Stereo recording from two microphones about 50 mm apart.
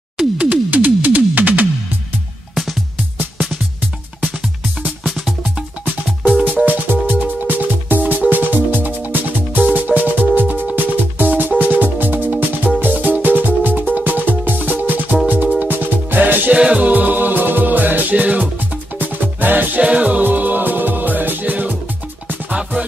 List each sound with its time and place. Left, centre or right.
0.4 s music: right
2.5 s music: centre
5.0 s music: centre
6.4 s music: right
16.5 s music: right
19.8 s music: right